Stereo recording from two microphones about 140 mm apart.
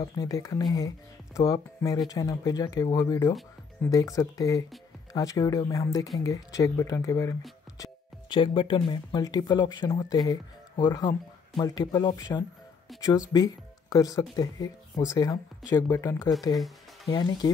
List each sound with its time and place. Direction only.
0.0 s speech: 25° left (ahead or behind)
7.8 s speech: 35° left (ahead or behind)
16.5 s music: centre (ahead or behind)
17.1 s speech: 30° left (ahead or behind)